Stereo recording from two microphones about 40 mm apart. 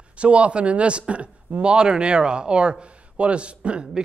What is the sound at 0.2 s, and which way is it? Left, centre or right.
Speech, right.